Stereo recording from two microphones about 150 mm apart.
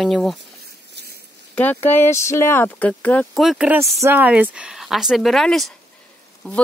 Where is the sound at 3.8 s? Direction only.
20° right (ahead or behind).